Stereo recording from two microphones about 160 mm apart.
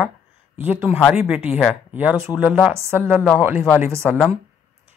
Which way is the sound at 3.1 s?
5° left (ahead or behind).